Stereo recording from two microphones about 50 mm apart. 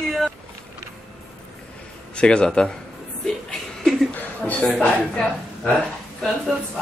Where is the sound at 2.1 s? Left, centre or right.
Centre.